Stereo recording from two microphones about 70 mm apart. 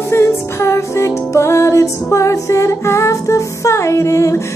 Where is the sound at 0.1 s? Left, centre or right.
Left.